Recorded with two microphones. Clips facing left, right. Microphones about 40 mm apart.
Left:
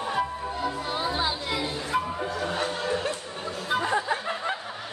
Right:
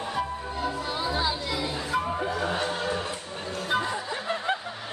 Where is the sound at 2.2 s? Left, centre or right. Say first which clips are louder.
Right 1 dB; centre.